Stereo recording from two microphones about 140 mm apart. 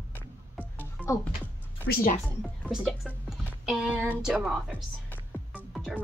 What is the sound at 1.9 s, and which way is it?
Speech, 90° left.